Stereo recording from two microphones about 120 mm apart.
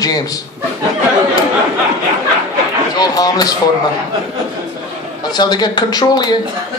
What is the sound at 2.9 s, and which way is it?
Speech, 35° left (ahead or behind).